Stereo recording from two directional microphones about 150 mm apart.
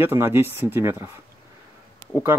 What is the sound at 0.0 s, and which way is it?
Speech, 15° right (ahead or behind).